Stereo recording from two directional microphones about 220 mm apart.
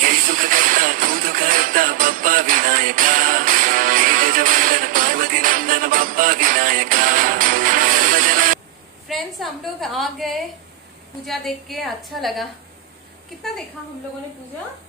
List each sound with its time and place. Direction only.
0.0 s music: 40° right (ahead or behind)
9.0 s a woman's voice: centre (ahead or behind)